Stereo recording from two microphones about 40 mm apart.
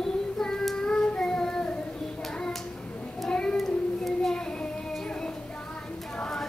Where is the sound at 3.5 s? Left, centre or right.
Centre.